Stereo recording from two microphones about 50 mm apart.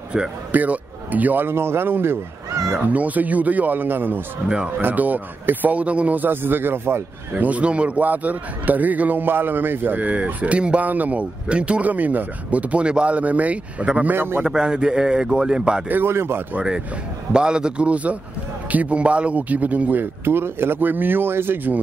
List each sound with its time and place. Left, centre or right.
0.5 s a man's voice: right
1.5 s speech: right
2.8 s a man's voice: right
7.3 s a man's voice: right
14.1 s speech: right
14.4 s a man's voice: centre
16.1 s speech: right
17.3 s a man's voice: centre; by 21.5 s right